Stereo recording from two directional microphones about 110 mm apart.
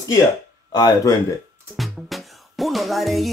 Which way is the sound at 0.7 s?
40° left (ahead or behind).